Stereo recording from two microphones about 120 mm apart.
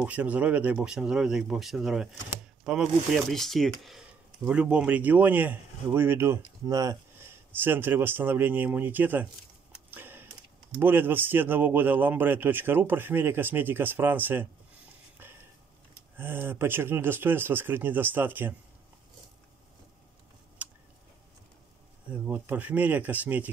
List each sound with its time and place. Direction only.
0.0 s a man's voice: 10° right (ahead or behind)
4.5 s a man's voice: 10° right (ahead or behind); by 7.0 s 30° right (ahead or behind)
7.2 s a man's voice: 20° right (ahead or behind)
9.8 s a sound: 15° right (ahead or behind)
10.8 s a man's voice: 15° right (ahead or behind)
16.2 s a man's voice: 15° right (ahead or behind)
20.6 s a sound: 15° right (ahead or behind)
22.1 s a man's voice: 15° right (ahead or behind)